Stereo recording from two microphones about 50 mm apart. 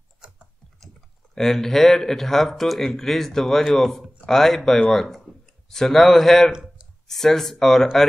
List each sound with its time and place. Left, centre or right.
1.3 s speech: centre
6.5 s a sound: centre
7.1 s speech: centre